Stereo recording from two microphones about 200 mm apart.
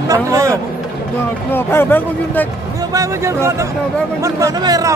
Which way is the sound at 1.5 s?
10° left (ahead or behind).